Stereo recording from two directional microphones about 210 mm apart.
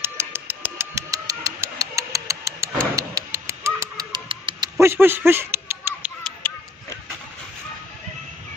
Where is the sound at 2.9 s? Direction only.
15° right (ahead or behind).